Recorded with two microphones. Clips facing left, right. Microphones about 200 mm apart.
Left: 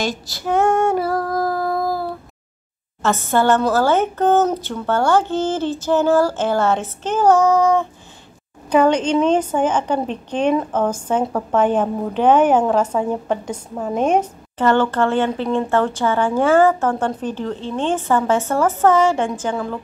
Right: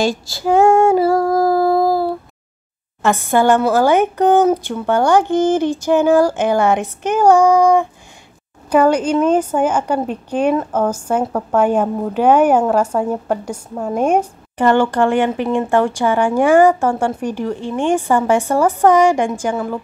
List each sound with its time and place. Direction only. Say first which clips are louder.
0.0 s female singing: right 6 dB; 30° right (ahead or behind)
0.9 s humming: right 6 dB; 25° right (ahead or behind)
3.0 s a woman's voice: right 3 dB; 15° right (ahead or behind)